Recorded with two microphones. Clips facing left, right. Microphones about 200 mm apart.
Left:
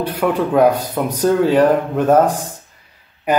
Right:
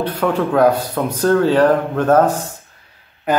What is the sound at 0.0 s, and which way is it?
A man's voice, 10° left (ahead or behind).